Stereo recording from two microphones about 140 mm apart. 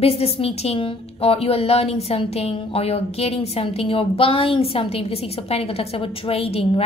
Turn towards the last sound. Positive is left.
turn(degrees=45)  # may be behind; listen again after turning